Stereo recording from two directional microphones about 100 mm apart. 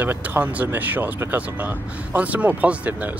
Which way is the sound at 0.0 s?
20° right (ahead or behind).